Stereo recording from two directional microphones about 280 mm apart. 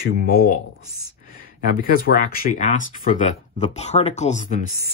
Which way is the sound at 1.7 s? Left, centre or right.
Left.